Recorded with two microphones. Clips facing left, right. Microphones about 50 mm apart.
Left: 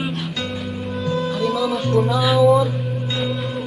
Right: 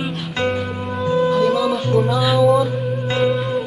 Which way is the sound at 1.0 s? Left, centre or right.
Right.